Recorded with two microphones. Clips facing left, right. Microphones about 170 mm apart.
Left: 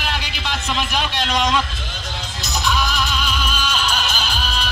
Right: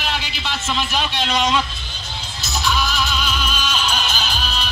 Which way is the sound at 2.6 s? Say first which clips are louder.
Even; 5° right (ahead or behind).